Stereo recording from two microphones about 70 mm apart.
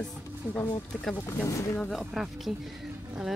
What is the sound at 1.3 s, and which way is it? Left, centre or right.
Speech, left.